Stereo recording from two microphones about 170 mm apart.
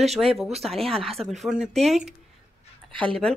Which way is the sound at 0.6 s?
Centre (ahead or behind).